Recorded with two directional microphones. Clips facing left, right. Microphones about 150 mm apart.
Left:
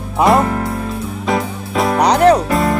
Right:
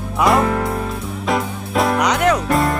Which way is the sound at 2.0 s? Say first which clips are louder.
Left 6 dB; 35° left (ahead or behind).